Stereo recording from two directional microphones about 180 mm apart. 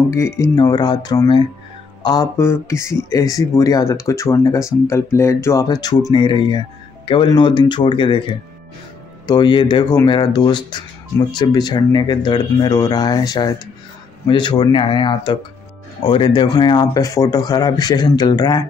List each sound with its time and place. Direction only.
0.1 s speech: 20° left (ahead or behind)
9.2 s speech: 25° left (ahead or behind)